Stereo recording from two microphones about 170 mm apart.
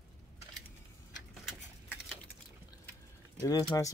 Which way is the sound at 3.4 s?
20° left (ahead or behind).